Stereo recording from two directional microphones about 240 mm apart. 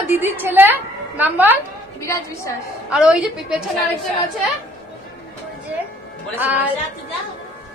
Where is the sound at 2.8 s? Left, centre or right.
Centre.